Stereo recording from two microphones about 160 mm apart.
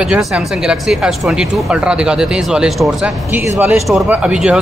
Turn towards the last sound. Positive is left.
turn(degrees=-5)  # may be behind; listen again after turning